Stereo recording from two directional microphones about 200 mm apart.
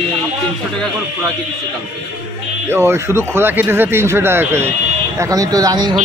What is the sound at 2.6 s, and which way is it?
Speech, 10° right (ahead or behind).